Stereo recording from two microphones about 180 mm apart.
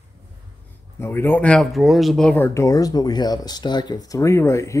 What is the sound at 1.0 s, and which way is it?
Speech, 15° left (ahead or behind).